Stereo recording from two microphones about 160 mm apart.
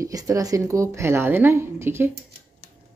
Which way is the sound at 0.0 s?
20° right (ahead or behind).